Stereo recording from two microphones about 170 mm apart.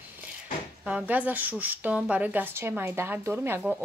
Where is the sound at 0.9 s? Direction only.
5° right (ahead or behind).